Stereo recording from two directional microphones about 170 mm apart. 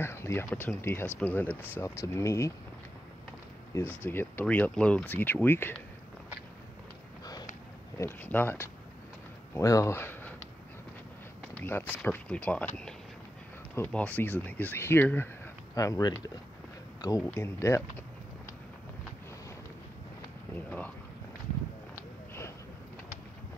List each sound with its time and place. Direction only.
0.0 s speech: 15° left (ahead or behind)
3.7 s speech: 15° left (ahead or behind)
8.0 s speech: 10° left (ahead or behind)
11.5 s speech: 10° left (ahead or behind)
17.2 s speech: 15° left (ahead or behind)
20.5 s speech: 10° left (ahead or behind)